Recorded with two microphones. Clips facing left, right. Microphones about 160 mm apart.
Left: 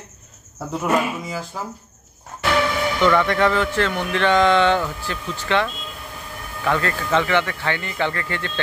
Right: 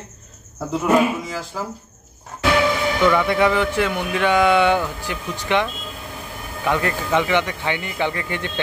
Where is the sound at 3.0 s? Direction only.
10° right (ahead or behind).